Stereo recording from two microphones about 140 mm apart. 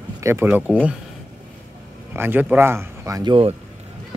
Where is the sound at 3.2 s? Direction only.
40° right (ahead or behind).